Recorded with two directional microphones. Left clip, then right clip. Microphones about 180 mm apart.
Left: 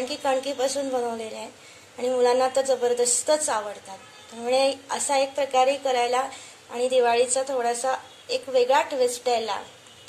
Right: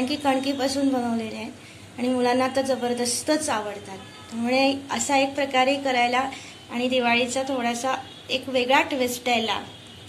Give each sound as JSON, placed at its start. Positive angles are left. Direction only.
{"t": 0.1, "sound": "a woman's voice", "side_deg": 30}